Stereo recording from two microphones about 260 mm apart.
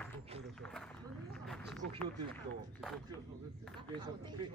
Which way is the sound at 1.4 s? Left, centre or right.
Centre.